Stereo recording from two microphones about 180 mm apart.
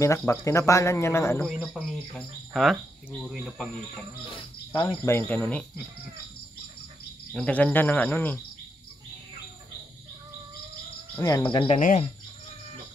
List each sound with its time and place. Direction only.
0.3 s speech: 15° left (ahead or behind)
1.4 s speech: centre (ahead or behind)
4.3 s speech: 20° left (ahead or behind)
7.3 s speech: 5° left (ahead or behind)
11.1 s cricket: 20° left (ahead or behind)
11.8 s speech: 45° left (ahead or behind)